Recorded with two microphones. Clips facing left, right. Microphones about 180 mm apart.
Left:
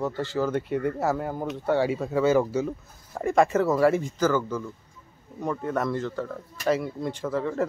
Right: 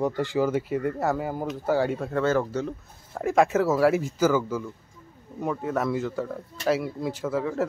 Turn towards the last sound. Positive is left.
turn(degrees=0)  # may be behind; listen again after turning